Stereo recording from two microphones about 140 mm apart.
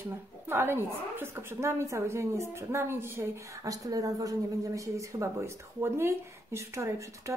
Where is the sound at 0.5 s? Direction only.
15° right (ahead or behind).